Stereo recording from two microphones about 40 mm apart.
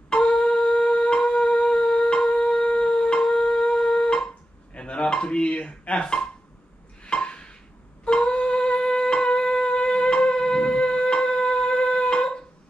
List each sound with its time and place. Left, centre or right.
0.1 s wind instrument: left
4.7 s dishes: left
7.1 s a sound: left
8.1 s wind instrument: left